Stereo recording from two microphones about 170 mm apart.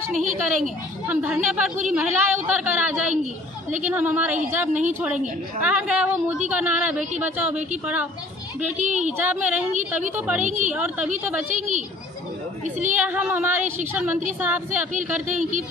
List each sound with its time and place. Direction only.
0.1 s speech: 45° right (ahead or behind)
1.0 s a woman's voice: 10° right (ahead or behind)
8.8 s speech: 45° right (ahead or behind)
9.2 s a woman's voice: 10° right (ahead or behind)
11.5 s speech: 45° right (ahead or behind)
12.9 s a woman's voice: 10° right (ahead or behind)
15.1 s speech: 45° right (ahead or behind)